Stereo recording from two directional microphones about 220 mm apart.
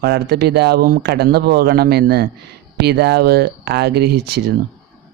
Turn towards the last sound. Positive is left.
turn(degrees=-45)  # may be behind; listen again after turning